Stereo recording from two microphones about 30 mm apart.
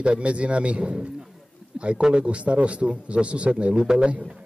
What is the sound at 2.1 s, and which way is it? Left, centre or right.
Speech, right.